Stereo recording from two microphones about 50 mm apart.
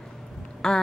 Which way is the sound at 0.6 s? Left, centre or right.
Centre.